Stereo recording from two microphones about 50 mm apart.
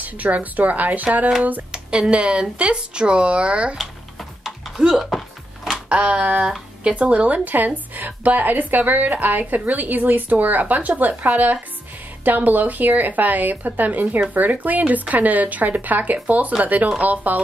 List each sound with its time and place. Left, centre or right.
0.0 s speech: right
1.7 s speech: centre
4.5 s a sound: centre
5.9 s speech: right
7.4 s speech: right